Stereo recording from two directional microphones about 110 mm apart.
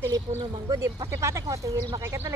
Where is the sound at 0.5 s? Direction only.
40° right (ahead or behind).